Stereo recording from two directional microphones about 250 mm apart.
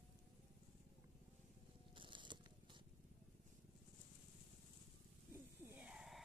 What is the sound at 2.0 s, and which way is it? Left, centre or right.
Biting, centre.